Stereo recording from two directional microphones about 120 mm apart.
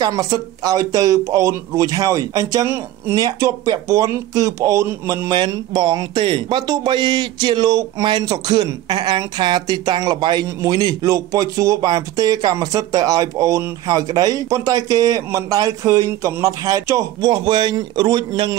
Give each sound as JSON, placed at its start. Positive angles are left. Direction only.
{"t": 0.0, "sound": "speech", "side_deg": -30}
{"t": 5.3, "sound": "speech", "side_deg": -35}
{"t": 17.3, "sound": "speech", "side_deg": -45}